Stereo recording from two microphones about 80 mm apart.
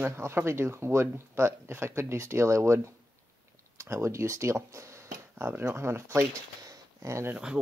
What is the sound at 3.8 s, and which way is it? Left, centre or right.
Speech, right.